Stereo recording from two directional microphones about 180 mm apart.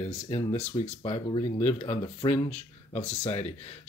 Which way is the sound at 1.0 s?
30° left (ahead or behind).